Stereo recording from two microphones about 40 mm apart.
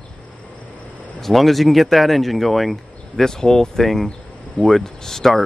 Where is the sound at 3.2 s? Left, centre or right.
Centre.